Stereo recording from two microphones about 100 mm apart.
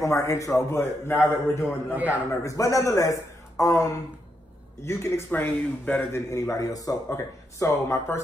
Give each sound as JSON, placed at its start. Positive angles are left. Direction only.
{"t": 0.0, "sound": "a man's voice", "side_deg": 30}
{"t": 6.3, "sound": "speech", "side_deg": 35}